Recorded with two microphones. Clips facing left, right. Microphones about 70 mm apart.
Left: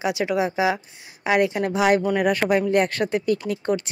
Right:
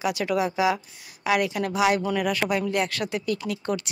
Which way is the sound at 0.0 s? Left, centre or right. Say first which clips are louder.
Left 2 dB; left.